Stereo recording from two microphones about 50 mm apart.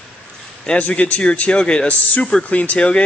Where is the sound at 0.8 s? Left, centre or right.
Left.